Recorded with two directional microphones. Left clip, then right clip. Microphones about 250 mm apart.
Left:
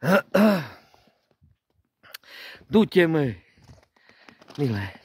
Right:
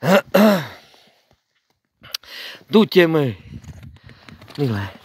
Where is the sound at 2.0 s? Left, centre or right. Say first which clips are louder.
Right 10 dB; centre.